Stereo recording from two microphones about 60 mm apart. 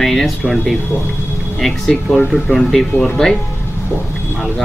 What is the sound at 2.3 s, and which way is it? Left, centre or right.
Speech, centre.